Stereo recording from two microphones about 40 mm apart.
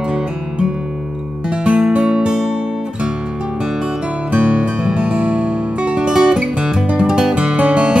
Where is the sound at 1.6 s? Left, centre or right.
Right.